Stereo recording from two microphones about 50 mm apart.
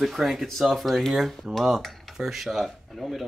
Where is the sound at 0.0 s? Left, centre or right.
Centre.